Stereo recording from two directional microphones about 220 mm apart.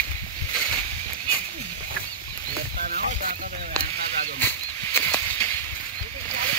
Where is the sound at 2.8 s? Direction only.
40° right (ahead or behind).